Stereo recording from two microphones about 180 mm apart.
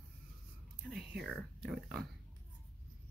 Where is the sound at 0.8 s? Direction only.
Centre (ahead or behind).